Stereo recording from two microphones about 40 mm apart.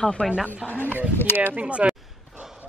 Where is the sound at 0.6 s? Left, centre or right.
Left.